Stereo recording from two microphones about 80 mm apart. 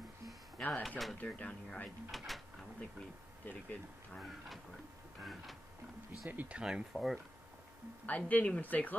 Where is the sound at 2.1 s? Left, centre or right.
Centre.